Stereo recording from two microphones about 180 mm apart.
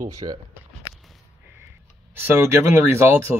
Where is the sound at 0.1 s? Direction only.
20° right (ahead or behind).